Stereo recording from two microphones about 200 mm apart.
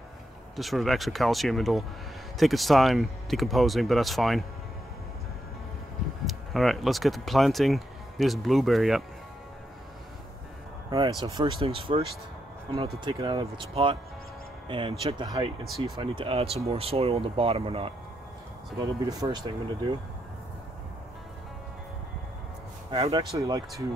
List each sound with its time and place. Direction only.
0.6 s speech: centre (ahead or behind)
6.2 s speech: centre (ahead or behind)
11.2 s speech: 20° right (ahead or behind)
19.0 s speech: 20° right (ahead or behind)
22.8 s speech: 25° right (ahead or behind)